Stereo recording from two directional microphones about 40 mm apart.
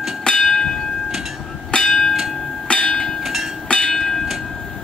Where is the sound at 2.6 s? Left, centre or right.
Centre.